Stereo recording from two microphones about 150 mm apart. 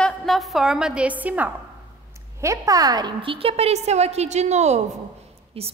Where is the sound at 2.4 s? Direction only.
20° right (ahead or behind).